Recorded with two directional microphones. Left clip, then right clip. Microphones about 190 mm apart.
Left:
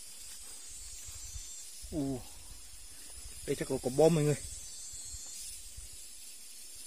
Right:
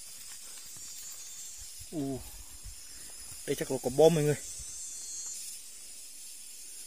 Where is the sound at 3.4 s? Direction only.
Centre (ahead or behind).